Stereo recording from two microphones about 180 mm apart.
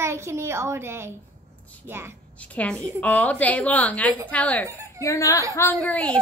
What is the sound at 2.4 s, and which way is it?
A woman's voice, 5° left (ahead or behind).